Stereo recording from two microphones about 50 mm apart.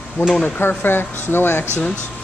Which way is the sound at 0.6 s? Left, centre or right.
Left.